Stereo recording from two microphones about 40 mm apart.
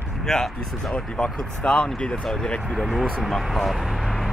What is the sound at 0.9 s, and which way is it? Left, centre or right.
Speech, left.